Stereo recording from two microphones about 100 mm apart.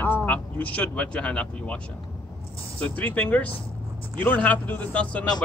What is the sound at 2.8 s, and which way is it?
Speech, 15° left (ahead or behind).